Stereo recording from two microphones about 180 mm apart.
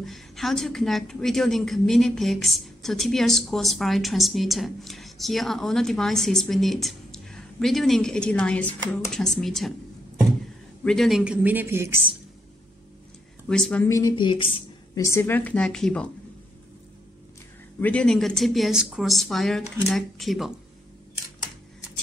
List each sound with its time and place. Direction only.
0.0 s a woman's voice: centre (ahead or behind)
10.8 s speech: 5° left (ahead or behind); by 12.0 s 15° right (ahead or behind)
13.5 s a woman's voice: 5° left (ahead or behind)
13.8 s speech: 20° left (ahead or behind)
15.0 s a woman's voice: 15° left (ahead or behind)
17.7 s a woman's voice: 5° left (ahead or behind)